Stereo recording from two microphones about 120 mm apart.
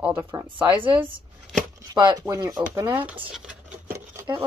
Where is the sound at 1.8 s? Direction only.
35° right (ahead or behind).